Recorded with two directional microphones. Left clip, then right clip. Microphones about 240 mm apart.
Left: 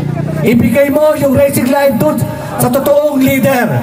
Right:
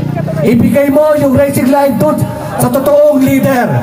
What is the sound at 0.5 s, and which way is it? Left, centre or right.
A man's voice, centre.